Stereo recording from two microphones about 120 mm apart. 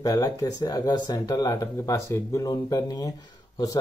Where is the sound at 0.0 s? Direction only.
30° left (ahead or behind).